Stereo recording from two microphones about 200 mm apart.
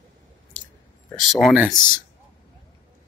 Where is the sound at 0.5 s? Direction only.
40° left (ahead or behind).